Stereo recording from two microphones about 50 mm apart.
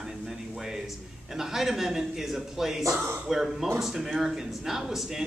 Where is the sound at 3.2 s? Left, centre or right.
Centre.